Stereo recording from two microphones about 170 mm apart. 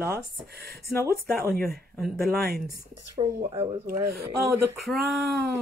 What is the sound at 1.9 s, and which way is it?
Speech, centre (ahead or behind).